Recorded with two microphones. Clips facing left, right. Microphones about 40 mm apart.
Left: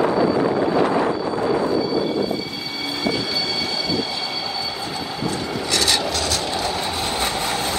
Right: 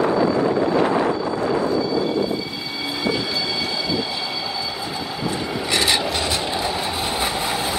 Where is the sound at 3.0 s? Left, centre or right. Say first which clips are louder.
Even; centre.